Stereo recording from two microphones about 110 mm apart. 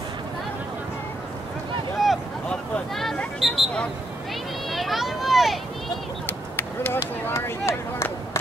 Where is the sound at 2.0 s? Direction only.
Centre (ahead or behind).